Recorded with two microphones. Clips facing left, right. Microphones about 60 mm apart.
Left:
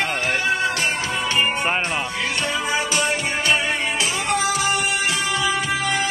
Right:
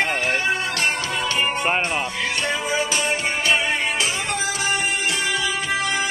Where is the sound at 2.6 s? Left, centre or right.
Left.